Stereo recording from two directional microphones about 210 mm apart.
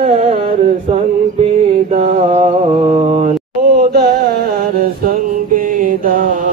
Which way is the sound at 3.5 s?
45° right (ahead or behind).